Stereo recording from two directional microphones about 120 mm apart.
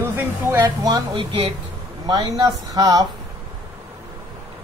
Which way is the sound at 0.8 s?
35° right (ahead or behind).